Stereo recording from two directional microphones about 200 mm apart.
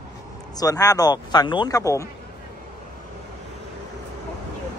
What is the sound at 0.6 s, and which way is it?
Speech, 20° left (ahead or behind).